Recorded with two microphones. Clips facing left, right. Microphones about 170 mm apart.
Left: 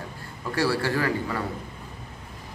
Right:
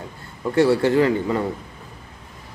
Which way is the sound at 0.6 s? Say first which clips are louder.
Right 9 dB; 20° right (ahead or behind).